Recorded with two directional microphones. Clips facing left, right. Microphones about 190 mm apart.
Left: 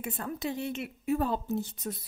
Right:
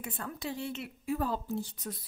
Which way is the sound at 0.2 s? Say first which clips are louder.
Left 3 dB; 20° left (ahead or behind).